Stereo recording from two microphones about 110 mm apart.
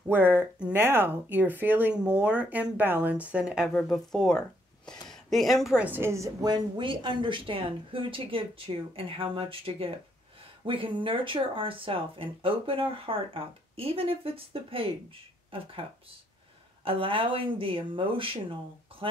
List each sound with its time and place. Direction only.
0.1 s speech: 20° right (ahead or behind)
3.7 s speech: 5° left (ahead or behind)
5.8 s a woman's voice: 20° right (ahead or behind)
6.5 s speech: 45° right (ahead or behind)
16.8 s speech: 55° right (ahead or behind)
18.9 s a sound: 55° right (ahead or behind)